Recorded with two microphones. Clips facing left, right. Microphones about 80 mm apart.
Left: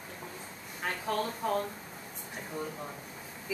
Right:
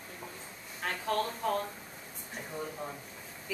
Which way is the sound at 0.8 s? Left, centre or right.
Centre.